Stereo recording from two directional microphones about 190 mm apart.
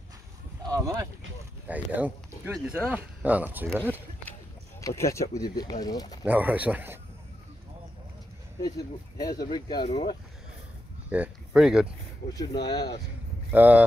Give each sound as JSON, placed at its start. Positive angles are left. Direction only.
{"t": 0.7, "sound": "speech", "side_deg": -20}
{"t": 4.8, "sound": "speech", "side_deg": 15}
{"t": 6.2, "sound": "speech", "side_deg": -10}
{"t": 8.5, "sound": "speech", "side_deg": 20}
{"t": 11.1, "sound": "speech", "side_deg": -5}
{"t": 12.6, "sound": "speech", "side_deg": 20}
{"t": 13.5, "sound": "speech", "side_deg": -10}